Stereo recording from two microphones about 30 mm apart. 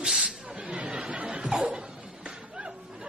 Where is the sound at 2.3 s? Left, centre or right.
Right.